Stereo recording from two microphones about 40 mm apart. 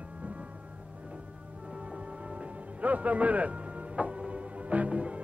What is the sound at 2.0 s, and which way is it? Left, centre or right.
Music, right.